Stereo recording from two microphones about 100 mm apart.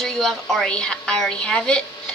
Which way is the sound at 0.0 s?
5° left (ahead or behind).